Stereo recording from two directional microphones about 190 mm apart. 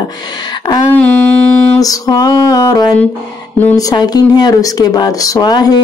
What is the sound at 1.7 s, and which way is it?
Speech, 20° left (ahead or behind).